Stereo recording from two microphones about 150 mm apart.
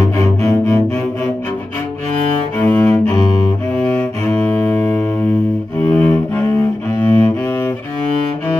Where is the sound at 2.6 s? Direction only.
10° left (ahead or behind).